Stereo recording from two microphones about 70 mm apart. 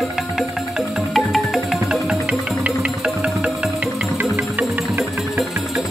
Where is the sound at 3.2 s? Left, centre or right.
Centre.